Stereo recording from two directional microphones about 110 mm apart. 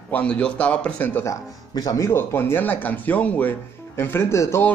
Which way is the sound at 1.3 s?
30° left (ahead or behind).